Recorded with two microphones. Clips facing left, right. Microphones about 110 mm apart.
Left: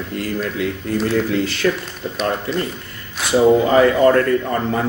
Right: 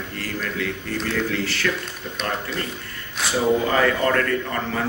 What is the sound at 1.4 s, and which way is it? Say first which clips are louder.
Speech: left 6 dB; 20° left (ahead or behind).